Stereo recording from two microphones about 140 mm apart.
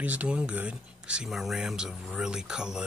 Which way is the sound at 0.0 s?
10° right (ahead or behind).